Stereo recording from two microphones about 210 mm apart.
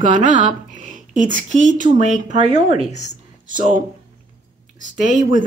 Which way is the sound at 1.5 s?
35° right (ahead or behind).